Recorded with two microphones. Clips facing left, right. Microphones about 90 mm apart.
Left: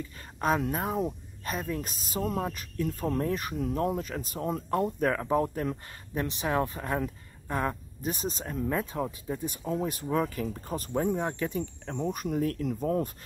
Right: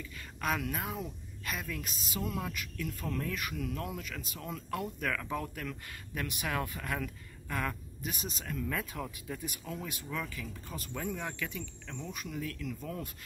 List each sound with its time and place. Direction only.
0.0 s speech: 35° left (ahead or behind)